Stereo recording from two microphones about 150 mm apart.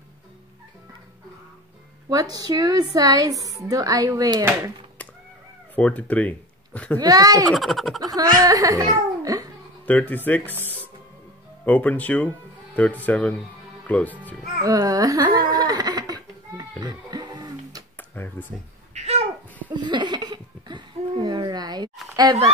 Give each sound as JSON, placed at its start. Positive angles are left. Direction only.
{"t": 2.0, "sound": "a woman's voice", "side_deg": -25}
{"t": 5.8, "sound": "speech", "side_deg": 10}
{"t": 7.0, "sound": "a woman's voice", "side_deg": -25}
{"t": 7.5, "sound": "a child's voice", "side_deg": 0}
{"t": 8.0, "sound": "a child's voice", "side_deg": -25}
{"t": 9.8, "sound": "speech", "side_deg": 10}
{"t": 11.6, "sound": "speech", "side_deg": 10}
{"t": 14.6, "sound": "a sound", "side_deg": -25}
{"t": 17.9, "sound": "tick-tock", "side_deg": 15}
{"t": 18.5, "sound": "speech", "side_deg": 5}
{"t": 18.9, "sound": "babbling", "side_deg": -45}
{"t": 19.7, "sound": "a sound", "side_deg": -30}
{"t": 22.1, "sound": "speech", "side_deg": -25}